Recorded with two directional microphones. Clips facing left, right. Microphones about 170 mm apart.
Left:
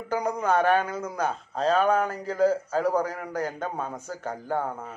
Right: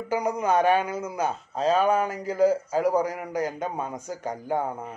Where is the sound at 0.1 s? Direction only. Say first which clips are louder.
Right 1 dB; 10° right (ahead or behind).